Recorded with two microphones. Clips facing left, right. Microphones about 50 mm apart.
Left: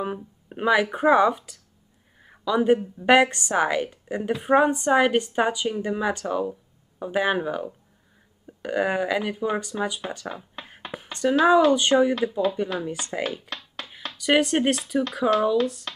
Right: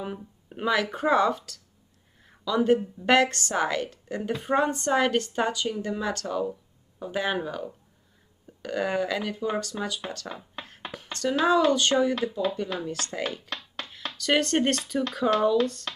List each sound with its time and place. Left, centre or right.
0.0 s speech: centre
2.2 s a sound: centre
3.0 s a woman's voice: centre
10.3 s a sound: centre
10.9 s a sound: centre
11.9 s a woman's voice: centre
12.2 s speech: centre
12.8 s speech: centre
14.1 s speech: centre